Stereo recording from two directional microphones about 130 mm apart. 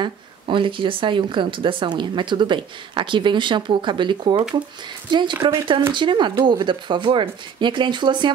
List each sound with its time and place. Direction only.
0.0 s speech: 40° right (ahead or behind)